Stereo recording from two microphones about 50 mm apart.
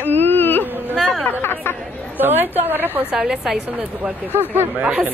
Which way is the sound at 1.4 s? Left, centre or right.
Left.